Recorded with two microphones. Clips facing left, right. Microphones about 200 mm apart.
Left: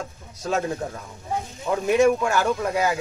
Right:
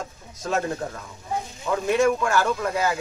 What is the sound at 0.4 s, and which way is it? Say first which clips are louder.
Speech: left 1 dB; 15° left (ahead or behind).